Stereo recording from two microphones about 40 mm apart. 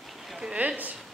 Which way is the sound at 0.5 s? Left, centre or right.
Right.